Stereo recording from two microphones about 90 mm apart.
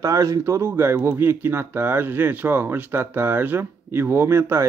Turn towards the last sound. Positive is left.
turn(degrees=-30)  # may be behind; listen again after turning